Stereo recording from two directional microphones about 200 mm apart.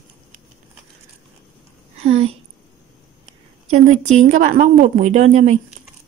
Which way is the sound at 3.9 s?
35° right (ahead or behind).